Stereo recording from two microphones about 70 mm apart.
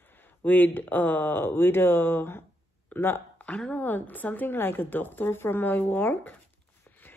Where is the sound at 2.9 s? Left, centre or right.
Left.